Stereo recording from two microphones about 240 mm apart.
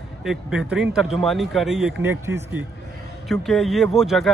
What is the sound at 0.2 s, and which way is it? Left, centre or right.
Speech, centre.